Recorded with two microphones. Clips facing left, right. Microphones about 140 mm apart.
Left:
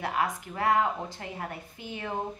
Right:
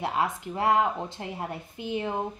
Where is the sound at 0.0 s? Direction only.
25° right (ahead or behind).